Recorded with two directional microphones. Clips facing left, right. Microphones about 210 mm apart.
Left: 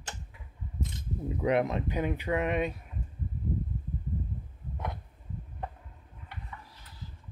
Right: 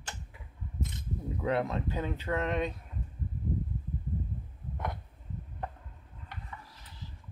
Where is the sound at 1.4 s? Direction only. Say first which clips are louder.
Left 3 dB; 20° left (ahead or behind).